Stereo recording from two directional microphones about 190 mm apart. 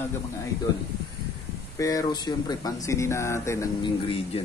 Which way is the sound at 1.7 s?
20° left (ahead or behind).